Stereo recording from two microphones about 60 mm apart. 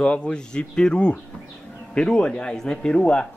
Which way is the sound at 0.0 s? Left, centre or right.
Centre.